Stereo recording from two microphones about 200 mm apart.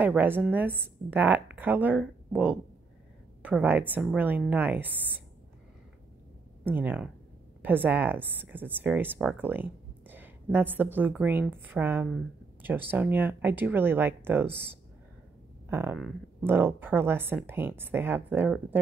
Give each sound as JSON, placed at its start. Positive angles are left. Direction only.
{"t": 0.0, "sound": "a woman's voice", "side_deg": -10}
{"t": 6.6, "sound": "a woman's voice", "side_deg": -10}